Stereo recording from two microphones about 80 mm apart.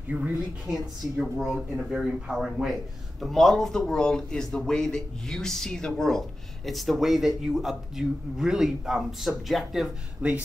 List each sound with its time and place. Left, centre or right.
0.1 s speech: centre
10.2 s speech: centre